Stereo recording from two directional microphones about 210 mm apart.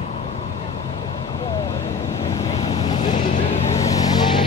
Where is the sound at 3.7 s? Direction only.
15° left (ahead or behind).